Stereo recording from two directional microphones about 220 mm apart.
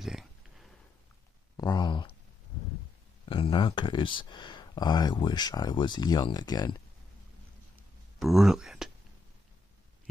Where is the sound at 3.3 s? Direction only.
20° left (ahead or behind).